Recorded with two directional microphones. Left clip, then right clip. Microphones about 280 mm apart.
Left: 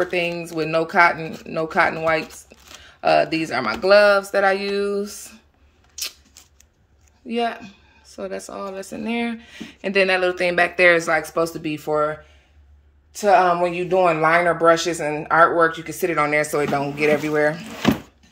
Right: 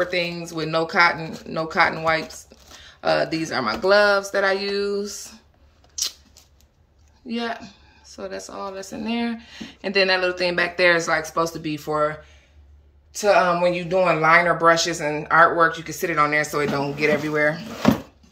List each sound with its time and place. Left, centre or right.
0.0 s speech: centre
5.9 s a sound: centre
7.2 s speech: centre